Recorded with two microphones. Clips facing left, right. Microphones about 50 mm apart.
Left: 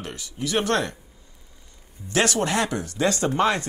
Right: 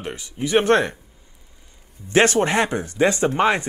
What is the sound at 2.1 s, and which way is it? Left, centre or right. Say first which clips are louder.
Speech: right 5 dB; right.